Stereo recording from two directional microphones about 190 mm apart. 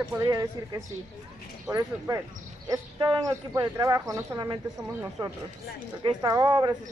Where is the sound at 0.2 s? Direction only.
20° right (ahead or behind).